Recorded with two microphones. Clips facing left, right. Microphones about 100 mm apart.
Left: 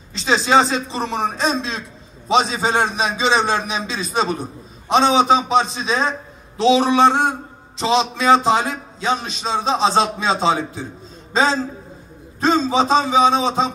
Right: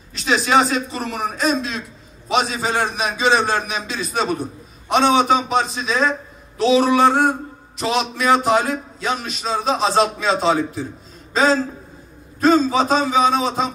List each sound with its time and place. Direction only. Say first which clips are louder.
0.2 s a man's voice: left 1 dB; 30° left (ahead or behind)